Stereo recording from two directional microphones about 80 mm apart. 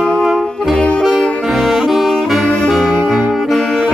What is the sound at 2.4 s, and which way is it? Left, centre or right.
Saxophone, right.